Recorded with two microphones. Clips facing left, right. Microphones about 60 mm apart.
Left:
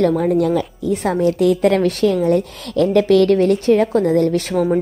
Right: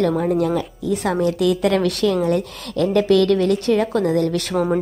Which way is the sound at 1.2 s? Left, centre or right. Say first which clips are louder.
Left 4 dB; right.